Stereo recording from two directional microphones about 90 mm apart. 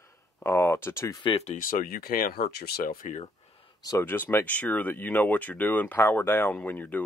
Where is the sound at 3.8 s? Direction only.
45° left (ahead or behind).